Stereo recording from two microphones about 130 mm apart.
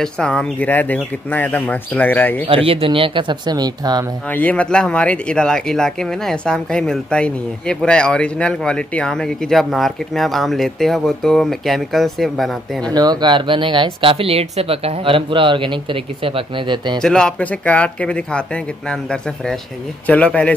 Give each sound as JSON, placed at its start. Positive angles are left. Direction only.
{"t": 0.0, "sound": "speech", "side_deg": 5}
{"t": 2.4, "sound": "speech", "side_deg": -45}
{"t": 4.3, "sound": "speech", "side_deg": 10}
{"t": 12.9, "sound": "speech", "side_deg": -30}
{"t": 17.0, "sound": "speech", "side_deg": 5}